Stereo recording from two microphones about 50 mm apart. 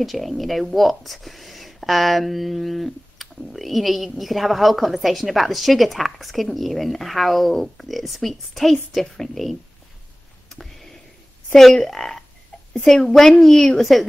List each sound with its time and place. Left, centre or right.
0.0 s speech: centre
10.5 s a sound: centre
11.5 s a child's voice: centre